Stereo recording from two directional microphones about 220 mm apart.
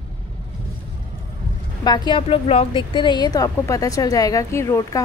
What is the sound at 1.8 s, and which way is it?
A woman's voice, 20° left (ahead or behind).